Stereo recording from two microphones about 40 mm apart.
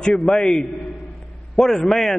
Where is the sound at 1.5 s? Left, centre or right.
Centre.